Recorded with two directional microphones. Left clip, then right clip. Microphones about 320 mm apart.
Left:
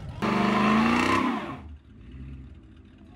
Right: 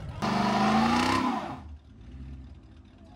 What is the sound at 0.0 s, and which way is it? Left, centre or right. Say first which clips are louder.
Vehicle: left 2 dB; centre.